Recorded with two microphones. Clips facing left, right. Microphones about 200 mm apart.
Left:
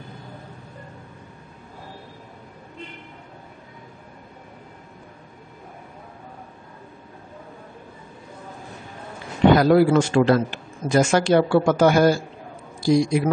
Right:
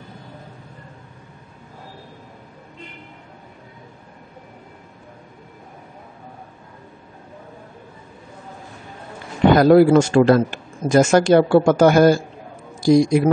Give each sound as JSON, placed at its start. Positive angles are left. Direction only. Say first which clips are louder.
{"t": 9.6, "sound": "a man's voice", "louder": "right 4 dB", "side_deg": -50}